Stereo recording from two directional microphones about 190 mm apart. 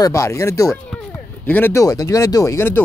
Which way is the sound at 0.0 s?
15° left (ahead or behind).